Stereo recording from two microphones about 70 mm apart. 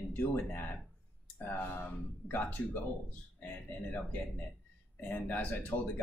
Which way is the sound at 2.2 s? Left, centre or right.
Left.